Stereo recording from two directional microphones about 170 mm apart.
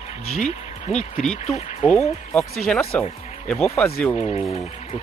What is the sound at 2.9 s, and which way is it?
Speech, 5° left (ahead or behind).